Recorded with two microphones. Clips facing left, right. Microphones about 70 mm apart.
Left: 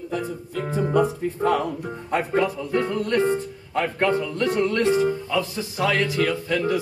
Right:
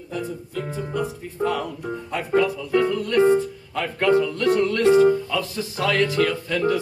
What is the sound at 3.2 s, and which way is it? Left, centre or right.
Music, centre.